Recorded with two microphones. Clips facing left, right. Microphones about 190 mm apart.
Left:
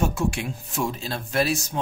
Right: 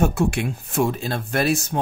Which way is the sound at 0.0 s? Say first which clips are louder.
Right 4 dB; 60° right (ahead or behind).